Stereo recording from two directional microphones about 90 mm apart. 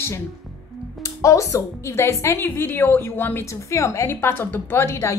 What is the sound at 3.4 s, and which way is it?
A woman's voice, 35° left (ahead or behind).